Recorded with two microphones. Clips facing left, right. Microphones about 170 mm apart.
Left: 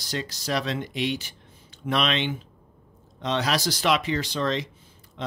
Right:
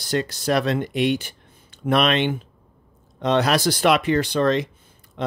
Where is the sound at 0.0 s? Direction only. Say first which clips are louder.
Right 8 dB; 60° right (ahead or behind).